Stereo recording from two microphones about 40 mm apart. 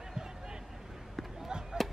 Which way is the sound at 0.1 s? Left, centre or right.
Centre.